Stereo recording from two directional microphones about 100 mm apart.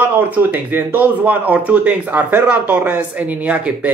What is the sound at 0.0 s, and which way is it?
Speech, 20° right (ahead or behind).